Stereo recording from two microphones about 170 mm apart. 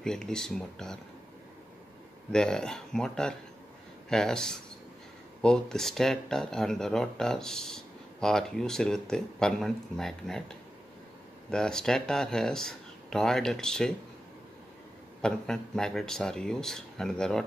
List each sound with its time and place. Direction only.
0.0 s speech: 5° left (ahead or behind)
2.3 s speech: 5° left (ahead or behind)
15.2 s speech: 5° left (ahead or behind)